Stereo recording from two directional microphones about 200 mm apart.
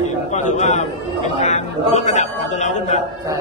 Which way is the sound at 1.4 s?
35° left (ahead or behind).